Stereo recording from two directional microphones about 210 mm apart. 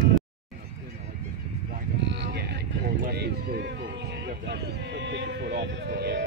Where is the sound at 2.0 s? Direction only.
55° right (ahead or behind).